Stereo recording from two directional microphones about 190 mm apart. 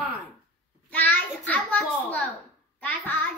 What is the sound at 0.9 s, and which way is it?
A child's voice, 10° left (ahead or behind).